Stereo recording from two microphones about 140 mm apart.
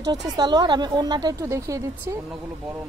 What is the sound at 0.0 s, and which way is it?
A woman's voice, 30° right (ahead or behind).